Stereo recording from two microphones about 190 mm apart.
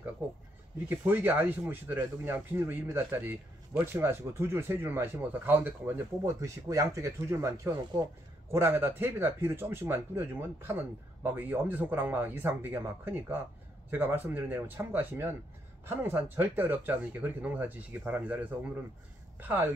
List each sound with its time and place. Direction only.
0.2 s speech: 10° right (ahead or behind)